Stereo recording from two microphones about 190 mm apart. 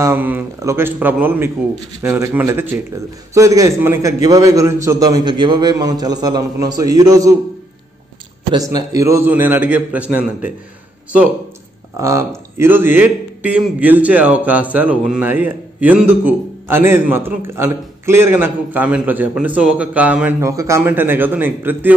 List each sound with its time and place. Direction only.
0.0 s a man's voice: 10° right (ahead or behind)
8.5 s a man's voice: 20° right (ahead or behind)
12.0 s a man's voice: 15° right (ahead or behind)